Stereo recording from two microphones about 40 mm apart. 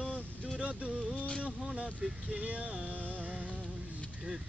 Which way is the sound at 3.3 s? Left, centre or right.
Right.